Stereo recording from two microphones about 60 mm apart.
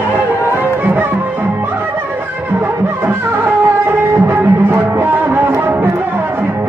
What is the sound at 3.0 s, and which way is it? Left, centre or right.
Music, right.